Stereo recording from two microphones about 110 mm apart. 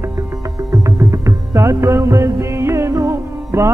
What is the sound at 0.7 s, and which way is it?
Music, 30° right (ahead or behind).